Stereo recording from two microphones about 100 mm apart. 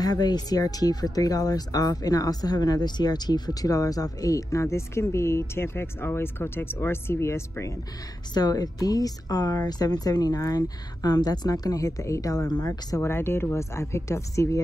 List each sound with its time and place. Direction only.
0.0 s speech: 45° left (ahead or behind); by 7.7 s 25° left (ahead or behind)
8.3 s speech: 40° left (ahead or behind)
13.1 s speech: 25° left (ahead or behind)